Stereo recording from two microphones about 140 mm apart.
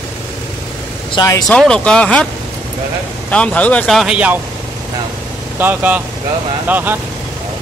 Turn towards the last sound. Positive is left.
turn(degrees=-15)  # may be behind; listen again after turning